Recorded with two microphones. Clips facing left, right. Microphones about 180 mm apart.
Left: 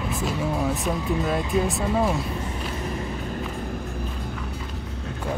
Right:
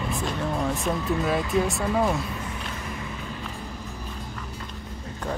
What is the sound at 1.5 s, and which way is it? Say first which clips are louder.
Speech: left 1 dB; centre (ahead or behind).